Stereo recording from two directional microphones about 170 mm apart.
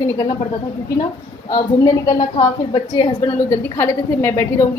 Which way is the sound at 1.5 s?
25° left (ahead or behind).